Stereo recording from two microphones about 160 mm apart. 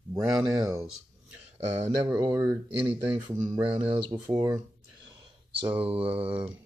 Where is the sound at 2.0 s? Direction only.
20° right (ahead or behind).